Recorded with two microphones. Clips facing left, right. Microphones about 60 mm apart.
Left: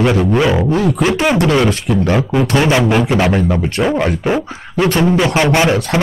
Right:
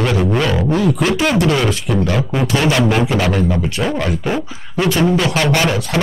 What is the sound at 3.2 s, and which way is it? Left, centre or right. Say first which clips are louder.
Speech: left 2 dB; left.